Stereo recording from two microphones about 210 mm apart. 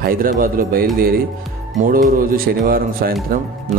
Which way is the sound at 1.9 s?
45° right (ahead or behind).